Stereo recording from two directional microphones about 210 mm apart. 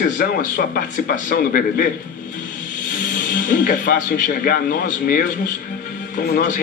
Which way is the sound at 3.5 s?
40° left (ahead or behind).